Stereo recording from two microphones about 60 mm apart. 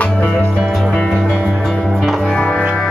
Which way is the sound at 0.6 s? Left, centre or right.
Centre.